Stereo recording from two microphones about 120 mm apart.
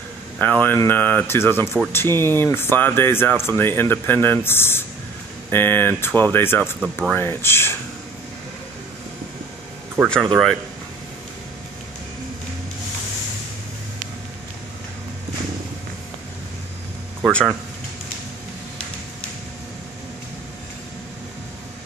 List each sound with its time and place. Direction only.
0.4 s speech: 15° left (ahead or behind)
10.0 s speech: 5° left (ahead or behind)
17.2 s speech: 5° left (ahead or behind)